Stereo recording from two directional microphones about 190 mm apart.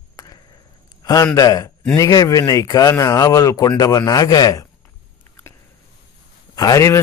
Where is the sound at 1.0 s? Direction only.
20° left (ahead or behind).